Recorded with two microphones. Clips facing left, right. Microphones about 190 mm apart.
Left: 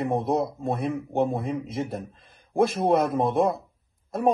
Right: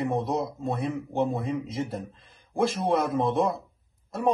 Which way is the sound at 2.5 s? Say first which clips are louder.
Left 3 dB; 55° left (ahead or behind).